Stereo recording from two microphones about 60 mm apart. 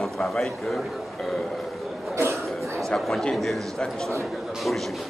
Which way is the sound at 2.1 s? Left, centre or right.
Right.